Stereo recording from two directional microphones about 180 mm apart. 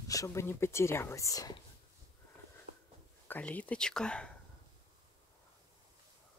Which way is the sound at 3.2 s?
10° left (ahead or behind).